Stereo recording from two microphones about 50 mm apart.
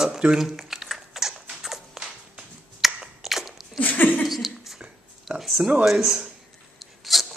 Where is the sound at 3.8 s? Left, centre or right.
Left.